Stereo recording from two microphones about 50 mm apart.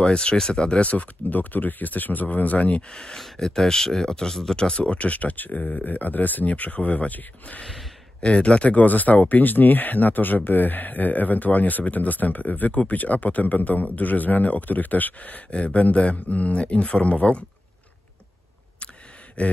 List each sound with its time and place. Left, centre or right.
0.0 s speech: centre
2.9 s speech: centre
19.4 s speech: left